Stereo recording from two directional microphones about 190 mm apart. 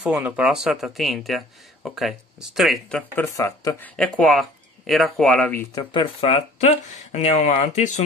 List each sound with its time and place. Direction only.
0.0 s speech: 5° right (ahead or behind)
3.2 s speech: 15° left (ahead or behind)
3.9 s speech: 5° left (ahead or behind)
5.9 s speech: 30° left (ahead or behind)